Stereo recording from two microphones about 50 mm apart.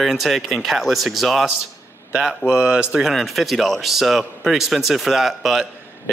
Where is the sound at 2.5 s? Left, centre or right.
Centre.